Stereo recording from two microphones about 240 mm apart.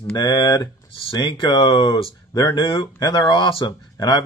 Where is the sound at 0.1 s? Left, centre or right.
Centre.